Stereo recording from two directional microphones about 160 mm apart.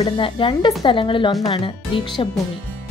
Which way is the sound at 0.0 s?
35° left (ahead or behind).